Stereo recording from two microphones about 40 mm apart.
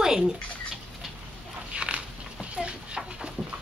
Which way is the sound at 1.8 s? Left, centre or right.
Right.